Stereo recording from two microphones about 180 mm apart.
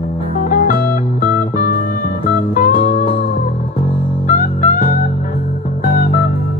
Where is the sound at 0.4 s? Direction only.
50° left (ahead or behind).